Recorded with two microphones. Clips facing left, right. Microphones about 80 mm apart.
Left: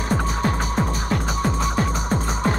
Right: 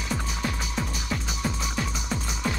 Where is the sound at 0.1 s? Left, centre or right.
Left.